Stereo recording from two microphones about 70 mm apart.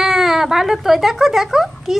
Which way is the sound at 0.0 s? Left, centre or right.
Centre.